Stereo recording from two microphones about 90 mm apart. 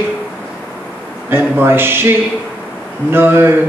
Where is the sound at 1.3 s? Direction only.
25° right (ahead or behind).